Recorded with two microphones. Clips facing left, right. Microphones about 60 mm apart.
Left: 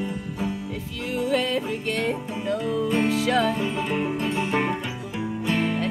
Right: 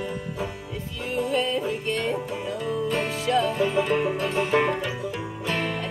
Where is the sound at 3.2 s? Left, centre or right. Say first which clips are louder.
Left 1 dB; left.